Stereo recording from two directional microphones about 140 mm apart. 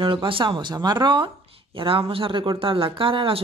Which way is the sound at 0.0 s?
40° right (ahead or behind).